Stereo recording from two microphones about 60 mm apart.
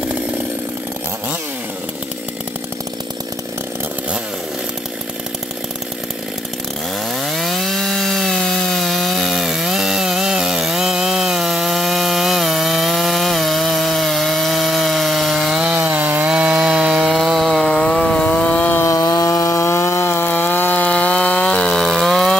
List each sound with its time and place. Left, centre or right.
7.2 s chainsaw: centre
15.5 s sawing: centre
16.3 s chainsaw: centre
18.2 s chainsaw: left
18.8 s chainsaw: left
19.0 s chainsaw: left; by 22.4 s centre